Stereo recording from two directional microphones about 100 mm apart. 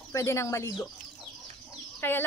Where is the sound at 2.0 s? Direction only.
20° left (ahead or behind).